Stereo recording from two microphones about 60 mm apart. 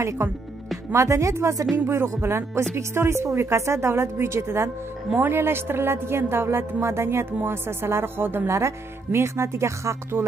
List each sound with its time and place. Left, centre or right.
0.2 s speech: right
0.9 s speech: right
1.9 s speech: right
5.1 s a woman's voice: right
8.5 s speech: right
10.2 s a woman's voice: right